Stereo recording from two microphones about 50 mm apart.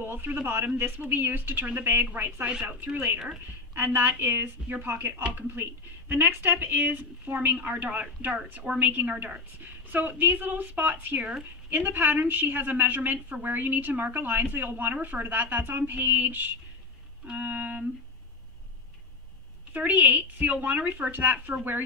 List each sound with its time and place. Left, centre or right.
0.0 s a woman's voice: right
0.9 s a woman's voice: right
3.7 s a woman's voice: right
4.0 s a woman's voice: right
19.7 s a woman's voice: right